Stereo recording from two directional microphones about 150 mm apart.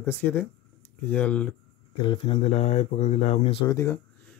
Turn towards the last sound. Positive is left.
turn(degrees=20)  # may be behind; listen again after turning